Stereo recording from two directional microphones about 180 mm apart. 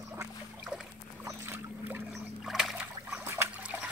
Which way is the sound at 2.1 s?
Centre (ahead or behind).